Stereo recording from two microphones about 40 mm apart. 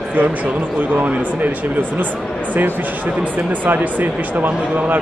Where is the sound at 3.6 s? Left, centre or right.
Right.